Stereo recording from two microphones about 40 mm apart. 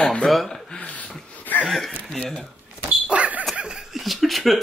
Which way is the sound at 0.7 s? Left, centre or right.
Left.